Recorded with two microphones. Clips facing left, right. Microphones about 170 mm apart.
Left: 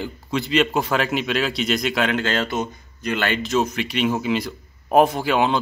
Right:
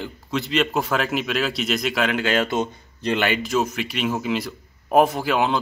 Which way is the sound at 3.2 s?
10° right (ahead or behind).